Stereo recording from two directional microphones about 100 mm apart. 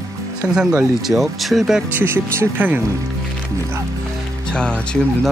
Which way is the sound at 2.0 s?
25° right (ahead or behind).